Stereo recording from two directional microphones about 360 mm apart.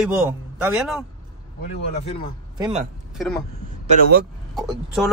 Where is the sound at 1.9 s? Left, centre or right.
Centre.